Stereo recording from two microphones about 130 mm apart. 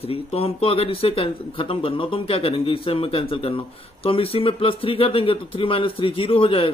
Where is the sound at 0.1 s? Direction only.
50° left (ahead or behind).